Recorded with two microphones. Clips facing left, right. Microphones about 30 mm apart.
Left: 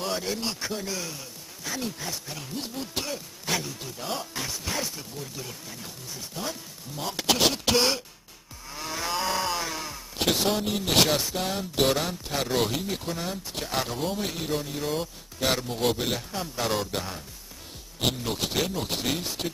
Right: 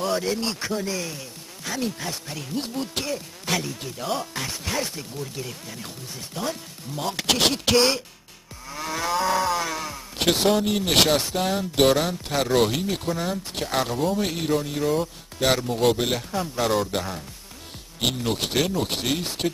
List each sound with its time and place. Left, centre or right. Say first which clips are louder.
0.2 s speech: right 4 dB; centre
8.6 s moo: right 4 dB; centre
9.1 s a sound: right 5 dB; centre
10.1 s a man's voice: right 5 dB; centre
13.9 s speech: right 6 dB; centre
14.2 s speech: right 5 dB; centre